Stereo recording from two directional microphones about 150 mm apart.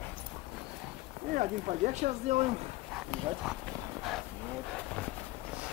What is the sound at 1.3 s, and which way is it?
Speech, 55° right (ahead or behind).